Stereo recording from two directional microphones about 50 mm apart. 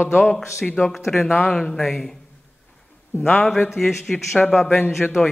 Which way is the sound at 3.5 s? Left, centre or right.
Centre.